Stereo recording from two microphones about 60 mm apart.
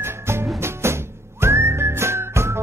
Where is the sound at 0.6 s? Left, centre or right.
Right.